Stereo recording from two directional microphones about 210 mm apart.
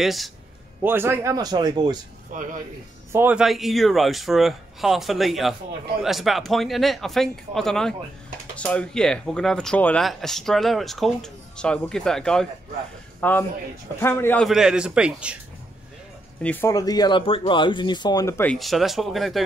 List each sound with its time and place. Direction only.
0.0 s speech: centre (ahead or behind); by 2.0 s 20° right (ahead or behind)
2.3 s speech: 40° right (ahead or behind)
3.1 s speech: 10° right (ahead or behind)
16.4 s speech: 15° left (ahead or behind)